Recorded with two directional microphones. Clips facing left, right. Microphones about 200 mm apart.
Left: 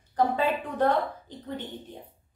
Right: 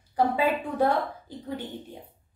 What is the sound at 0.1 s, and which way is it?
A woman's voice, 10° right (ahead or behind).